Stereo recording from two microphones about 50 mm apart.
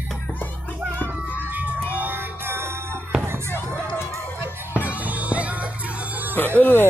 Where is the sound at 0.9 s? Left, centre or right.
Left.